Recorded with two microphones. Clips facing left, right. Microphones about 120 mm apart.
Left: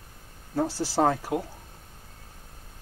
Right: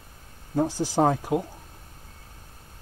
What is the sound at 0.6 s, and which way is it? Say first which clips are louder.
Speech: right 2 dB; 15° right (ahead or behind).